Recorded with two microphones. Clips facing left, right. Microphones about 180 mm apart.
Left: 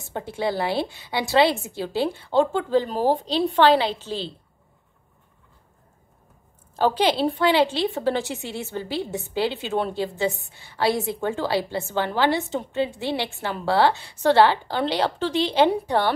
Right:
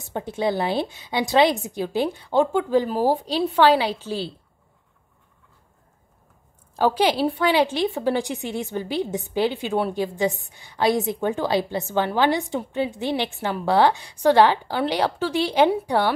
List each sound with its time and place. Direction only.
0.0 s a woman's voice: 20° right (ahead or behind)
6.7 s a woman's voice: 10° right (ahead or behind)